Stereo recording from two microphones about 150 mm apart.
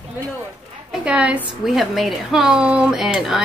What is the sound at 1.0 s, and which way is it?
A woman's voice, 5° right (ahead or behind).